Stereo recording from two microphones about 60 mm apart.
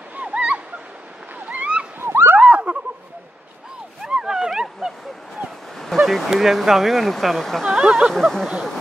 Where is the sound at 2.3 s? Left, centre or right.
Centre.